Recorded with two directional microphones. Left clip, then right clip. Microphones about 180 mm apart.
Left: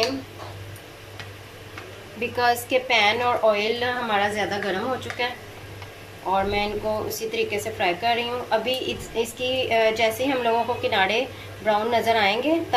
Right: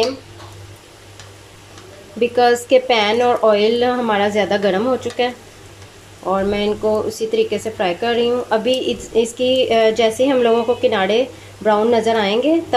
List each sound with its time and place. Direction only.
2.1 s speech: 45° right (ahead or behind)
6.3 s speech: 45° right (ahead or behind)